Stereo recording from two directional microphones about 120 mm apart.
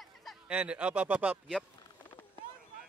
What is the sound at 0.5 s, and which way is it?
Speech, 10° right (ahead or behind).